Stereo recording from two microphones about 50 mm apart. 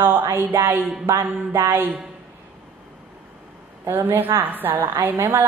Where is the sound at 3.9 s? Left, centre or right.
Right.